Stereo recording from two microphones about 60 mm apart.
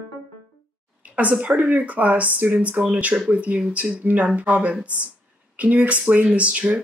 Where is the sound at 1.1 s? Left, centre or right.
Right.